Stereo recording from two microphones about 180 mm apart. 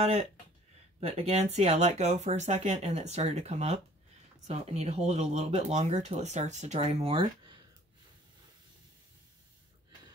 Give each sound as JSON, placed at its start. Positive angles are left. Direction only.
{"t": 0.0, "sound": "speech", "side_deg": -35}